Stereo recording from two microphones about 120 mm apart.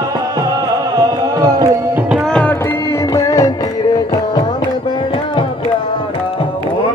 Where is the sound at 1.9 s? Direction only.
10° right (ahead or behind).